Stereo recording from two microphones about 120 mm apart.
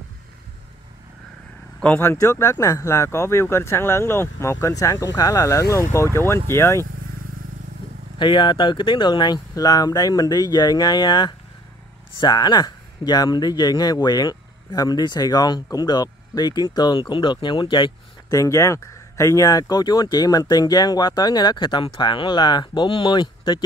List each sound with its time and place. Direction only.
2.0 s speech: 20° left (ahead or behind)
8.2 s speech: 40° left (ahead or behind)
18.3 s speech: 25° left (ahead or behind)